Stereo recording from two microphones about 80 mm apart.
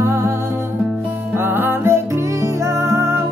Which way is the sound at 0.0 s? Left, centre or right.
Right.